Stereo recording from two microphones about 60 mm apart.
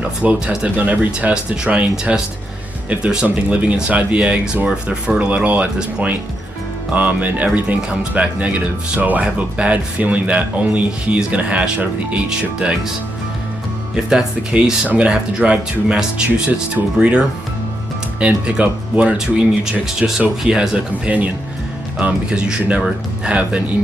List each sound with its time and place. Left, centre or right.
0.2 s speech: centre
14.0 s speech: centre
18.2 s speech: centre